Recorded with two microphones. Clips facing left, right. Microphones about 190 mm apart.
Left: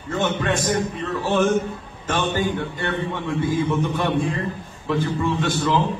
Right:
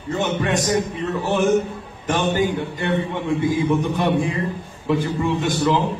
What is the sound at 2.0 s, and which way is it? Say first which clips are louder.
A man's voice: right 3 dB; 15° right (ahead or behind).